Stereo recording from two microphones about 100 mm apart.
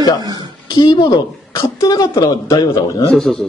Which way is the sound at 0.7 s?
45° left (ahead or behind).